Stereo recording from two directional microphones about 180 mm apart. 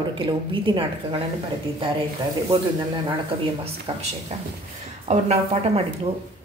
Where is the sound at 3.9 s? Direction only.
30° right (ahead or behind).